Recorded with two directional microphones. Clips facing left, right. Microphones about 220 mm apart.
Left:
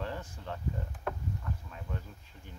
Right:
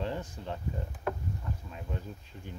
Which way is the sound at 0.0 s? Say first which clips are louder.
Right 4 dB; 20° right (ahead or behind).